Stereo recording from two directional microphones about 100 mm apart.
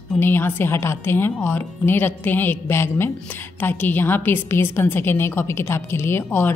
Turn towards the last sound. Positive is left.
turn(degrees=25)  # may be behind; listen again after turning